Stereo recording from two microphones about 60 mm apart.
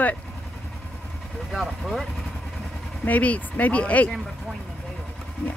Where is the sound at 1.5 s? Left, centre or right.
Centre.